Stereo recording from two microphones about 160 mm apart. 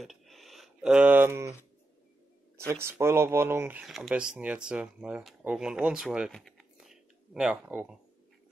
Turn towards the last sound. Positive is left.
turn(degrees=-5)  # may be behind; listen again after turning